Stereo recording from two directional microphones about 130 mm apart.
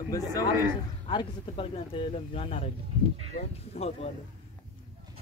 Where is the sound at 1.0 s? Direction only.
40° left (ahead or behind).